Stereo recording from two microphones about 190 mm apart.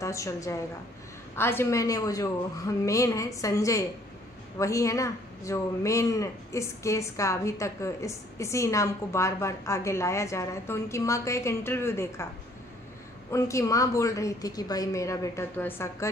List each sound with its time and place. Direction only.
0.0 s a woman's voice: 15° left (ahead or behind)
13.3 s a woman's voice: 15° left (ahead or behind)